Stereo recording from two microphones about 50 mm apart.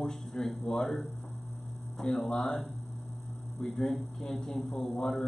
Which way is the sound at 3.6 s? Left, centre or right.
Centre.